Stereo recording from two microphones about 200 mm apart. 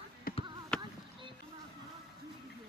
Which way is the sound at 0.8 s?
25° right (ahead or behind).